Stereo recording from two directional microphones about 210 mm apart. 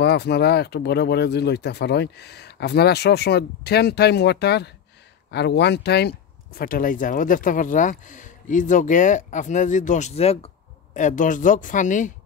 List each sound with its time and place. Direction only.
0.0 s speech: 50° left (ahead or behind)